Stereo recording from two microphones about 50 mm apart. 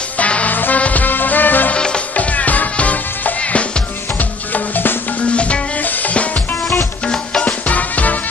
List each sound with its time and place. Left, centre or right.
0.2 s music: left
1.7 s music: centre
2.1 s music: left
5.2 s music: left
7.4 s music: left